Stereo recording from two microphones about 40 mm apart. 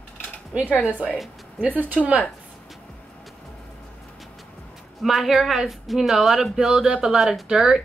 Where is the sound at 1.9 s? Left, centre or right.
Right.